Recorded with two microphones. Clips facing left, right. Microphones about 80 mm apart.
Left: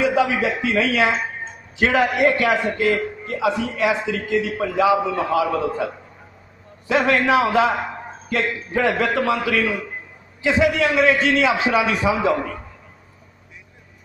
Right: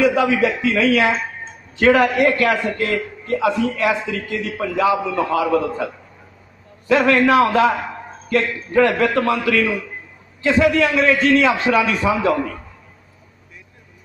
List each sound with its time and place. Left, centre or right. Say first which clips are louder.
0.0 s a sound: right 3 dB; centre
0.7 s a man's voice: right 2 dB; centre
6.9 s a man's voice: right 3 dB; centre